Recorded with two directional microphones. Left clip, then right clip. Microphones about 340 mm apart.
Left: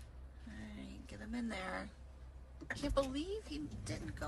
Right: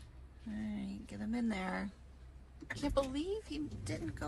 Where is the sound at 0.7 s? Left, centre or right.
Centre.